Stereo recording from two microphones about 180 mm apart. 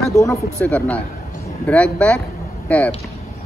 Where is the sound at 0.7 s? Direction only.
5° left (ahead or behind).